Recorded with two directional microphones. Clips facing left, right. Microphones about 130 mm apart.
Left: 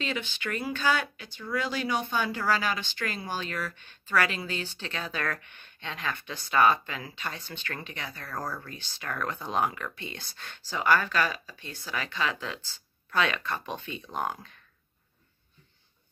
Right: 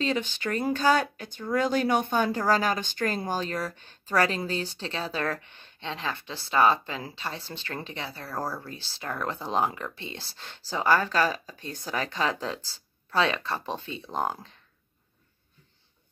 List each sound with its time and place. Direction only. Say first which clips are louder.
0.0 s speech: right 5 dB; 40° right (ahead or behind)